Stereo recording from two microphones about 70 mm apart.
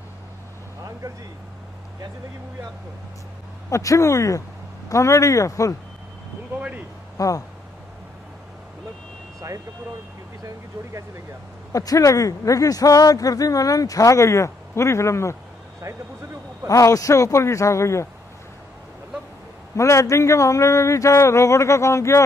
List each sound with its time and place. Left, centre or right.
3.7 s a man's voice: left
7.2 s a man's voice: left
10.4 s speech: right
11.7 s speech: left
16.6 s a man's voice: left
19.8 s a man's voice: left